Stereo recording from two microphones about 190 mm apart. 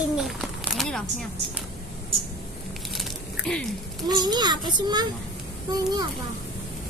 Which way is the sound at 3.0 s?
5° left (ahead or behind).